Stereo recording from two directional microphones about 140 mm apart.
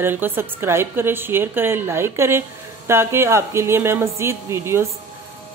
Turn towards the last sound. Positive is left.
turn(degrees=-20)  # may be behind; listen again after turning